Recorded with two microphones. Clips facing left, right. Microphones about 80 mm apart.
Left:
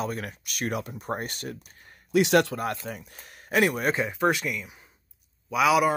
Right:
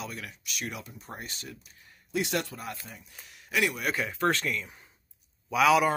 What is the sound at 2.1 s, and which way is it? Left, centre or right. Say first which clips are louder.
Speech: left 10 dB; left.